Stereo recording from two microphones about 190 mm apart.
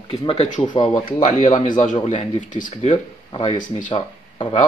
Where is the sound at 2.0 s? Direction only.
30° left (ahead or behind).